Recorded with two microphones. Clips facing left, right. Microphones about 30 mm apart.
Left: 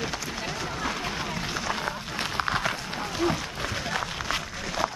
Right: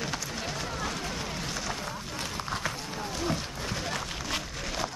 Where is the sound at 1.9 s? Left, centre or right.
Left.